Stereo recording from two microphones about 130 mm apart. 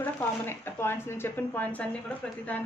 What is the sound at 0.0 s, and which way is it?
A woman's voice, 15° left (ahead or behind).